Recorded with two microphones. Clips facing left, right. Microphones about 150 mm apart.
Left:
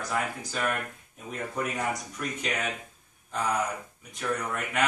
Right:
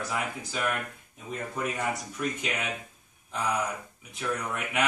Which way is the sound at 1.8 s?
5° right (ahead or behind).